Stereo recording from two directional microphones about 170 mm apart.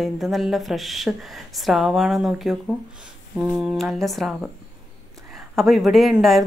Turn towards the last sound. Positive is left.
turn(degrees=0)  # may be behind; listen again after turning